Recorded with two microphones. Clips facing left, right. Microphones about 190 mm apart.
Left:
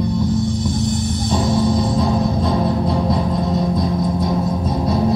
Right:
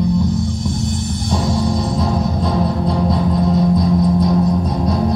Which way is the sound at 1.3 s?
Centre (ahead or behind).